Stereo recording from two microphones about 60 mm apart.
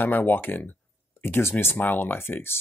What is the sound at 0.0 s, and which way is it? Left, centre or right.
Speech, left.